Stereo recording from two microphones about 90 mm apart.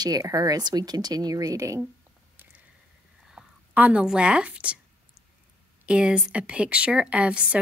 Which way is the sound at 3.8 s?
15° right (ahead or behind).